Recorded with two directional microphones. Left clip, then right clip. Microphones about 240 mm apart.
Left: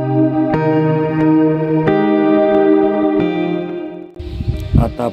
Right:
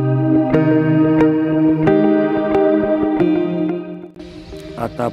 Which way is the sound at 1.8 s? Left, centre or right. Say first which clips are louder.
Left 3 dB; centre.